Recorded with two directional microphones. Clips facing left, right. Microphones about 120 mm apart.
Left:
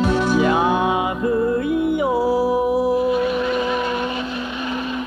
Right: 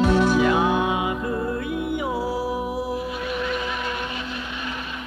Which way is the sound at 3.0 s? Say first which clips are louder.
Left 9 dB; 35° left (ahead or behind).